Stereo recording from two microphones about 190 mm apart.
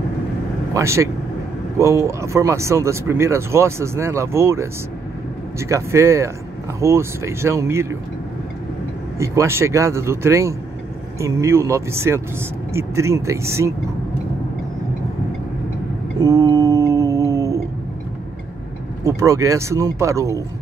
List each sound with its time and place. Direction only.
0.7 s speech: 15° right (ahead or behind)
9.2 s speech: 15° right (ahead or behind)
16.2 s humming: 15° right (ahead or behind)
19.0 s speech: 15° right (ahead or behind)